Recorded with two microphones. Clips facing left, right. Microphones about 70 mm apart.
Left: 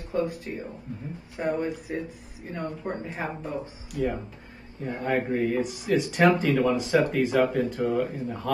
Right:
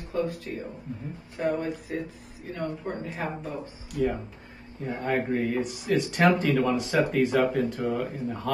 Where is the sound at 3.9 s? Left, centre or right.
Centre.